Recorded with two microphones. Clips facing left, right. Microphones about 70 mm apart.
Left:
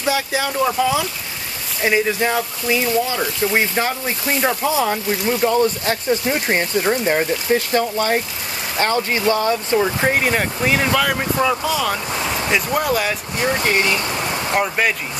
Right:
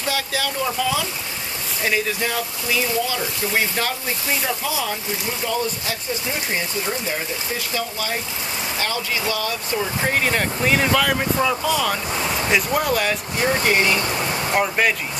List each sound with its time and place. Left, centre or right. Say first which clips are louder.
0.0 s speech: left 4 dB; centre
10.2 s speech: left 2 dB; centre
14.5 s speech: left 1 dB; centre